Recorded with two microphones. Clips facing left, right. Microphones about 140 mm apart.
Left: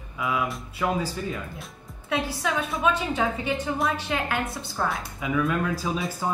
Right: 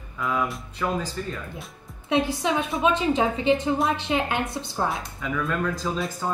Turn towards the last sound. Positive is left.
turn(degrees=10)  # may be behind; listen again after turning